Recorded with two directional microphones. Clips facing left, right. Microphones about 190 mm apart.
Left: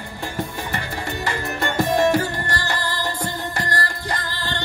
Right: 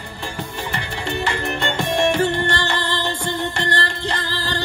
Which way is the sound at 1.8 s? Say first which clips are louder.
Left 1 dB; 25° right (ahead or behind).